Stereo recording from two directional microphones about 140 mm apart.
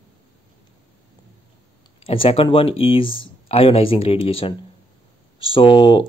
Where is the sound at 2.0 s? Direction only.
40° left (ahead or behind).